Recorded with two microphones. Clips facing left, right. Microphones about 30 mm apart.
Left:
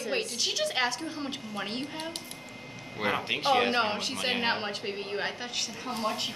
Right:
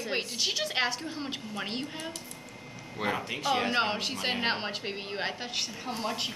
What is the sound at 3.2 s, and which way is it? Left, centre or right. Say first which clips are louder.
Speech: left 3 dB; left.